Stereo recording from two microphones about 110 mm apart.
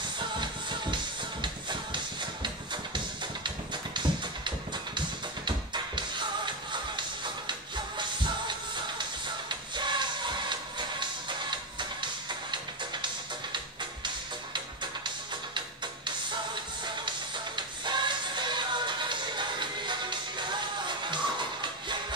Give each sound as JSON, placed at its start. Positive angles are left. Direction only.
{"t": 0.2, "sound": "music", "side_deg": -45}
{"t": 17.6, "sound": "music", "side_deg": -45}